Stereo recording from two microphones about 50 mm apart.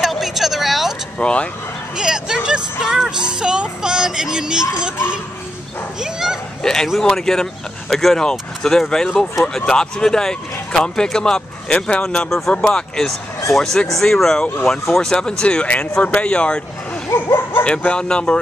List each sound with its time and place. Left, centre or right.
0.0 s vehicle: centre
1.1 s speech: left
2.0 s speech: centre
5.9 s speech: centre
6.6 s a man's voice: centre
12.3 s a man's voice: centre; by 16.6 s left
17.1 s speech: left
17.6 s speech: left